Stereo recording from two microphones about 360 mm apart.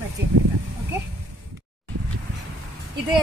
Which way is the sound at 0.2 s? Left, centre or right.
Right.